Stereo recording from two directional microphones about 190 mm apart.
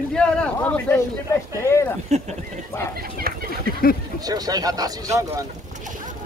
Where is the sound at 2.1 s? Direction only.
35° right (ahead or behind).